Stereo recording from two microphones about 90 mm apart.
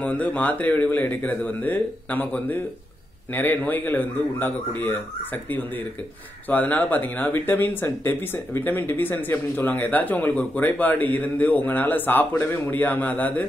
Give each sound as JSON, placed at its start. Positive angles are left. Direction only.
{"t": 0.0, "sound": "speech", "side_deg": 15}
{"t": 6.5, "sound": "speech", "side_deg": 20}